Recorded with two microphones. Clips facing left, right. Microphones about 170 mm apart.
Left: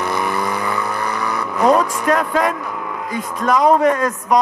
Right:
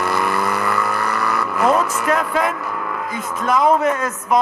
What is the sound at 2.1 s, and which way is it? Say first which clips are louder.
Speech: left 2 dB; 40° left (ahead or behind).